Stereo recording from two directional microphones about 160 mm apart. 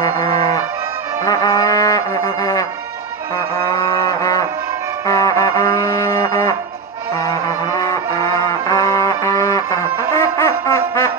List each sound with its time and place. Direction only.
1.2 s music: 20° left (ahead or behind)
4.0 s music: 20° left (ahead or behind)